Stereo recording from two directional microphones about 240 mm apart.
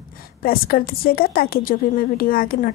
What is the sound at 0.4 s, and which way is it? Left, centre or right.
A woman's voice, left.